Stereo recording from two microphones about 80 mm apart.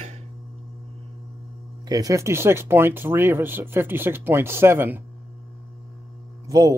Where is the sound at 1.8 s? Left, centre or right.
Right.